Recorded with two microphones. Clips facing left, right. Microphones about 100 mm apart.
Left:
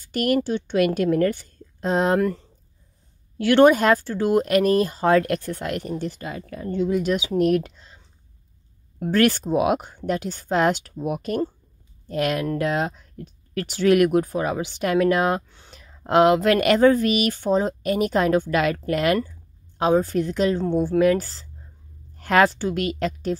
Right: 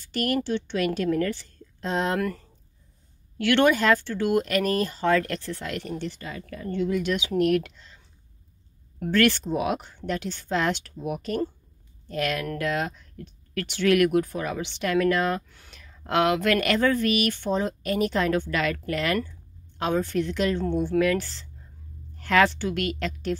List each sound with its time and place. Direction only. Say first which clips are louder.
0.0 s a woman's voice: left 5 dB; 45° left (ahead or behind)
3.3 s speech: left 6 dB; 40° left (ahead or behind)
9.0 s speech: left 2 dB; 40° left (ahead or behind)
15.4 s a woman's voice: left 3 dB; 30° left (ahead or behind)